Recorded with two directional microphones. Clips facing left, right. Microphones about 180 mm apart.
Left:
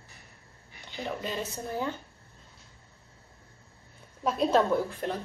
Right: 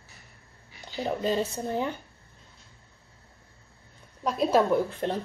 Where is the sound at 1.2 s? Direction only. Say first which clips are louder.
Right 7 dB; 30° right (ahead or behind).